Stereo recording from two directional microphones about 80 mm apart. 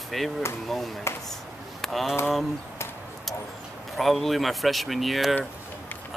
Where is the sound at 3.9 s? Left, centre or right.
Centre.